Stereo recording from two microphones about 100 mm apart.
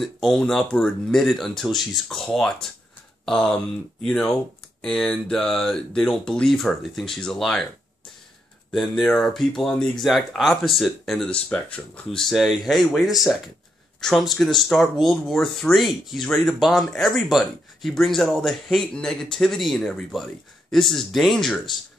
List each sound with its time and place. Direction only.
0.0 s speech: 5° left (ahead or behind)
8.7 s speech: centre (ahead or behind)
11.2 s speech: 10° left (ahead or behind)